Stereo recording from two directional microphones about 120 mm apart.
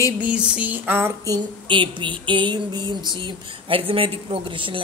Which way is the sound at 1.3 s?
45° right (ahead or behind).